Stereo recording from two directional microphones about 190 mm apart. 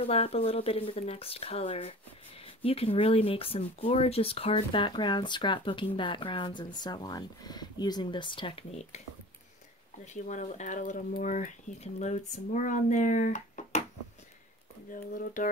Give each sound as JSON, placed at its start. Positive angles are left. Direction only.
{"t": 0.0, "sound": "speech", "side_deg": 30}
{"t": 10.0, "sound": "speech", "side_deg": 40}
{"t": 14.9, "sound": "speech", "side_deg": 45}